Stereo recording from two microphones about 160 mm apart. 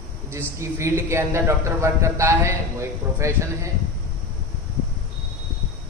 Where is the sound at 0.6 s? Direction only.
15° right (ahead or behind).